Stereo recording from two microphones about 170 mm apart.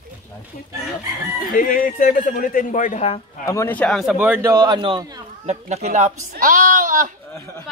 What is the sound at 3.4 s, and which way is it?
Speech, 15° left (ahead or behind).